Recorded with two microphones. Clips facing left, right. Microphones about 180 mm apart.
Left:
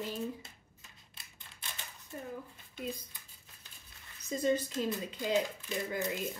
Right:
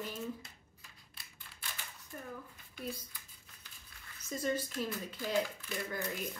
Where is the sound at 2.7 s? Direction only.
20° left (ahead or behind).